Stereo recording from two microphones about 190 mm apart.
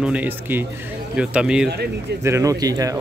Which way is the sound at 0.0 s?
5° right (ahead or behind).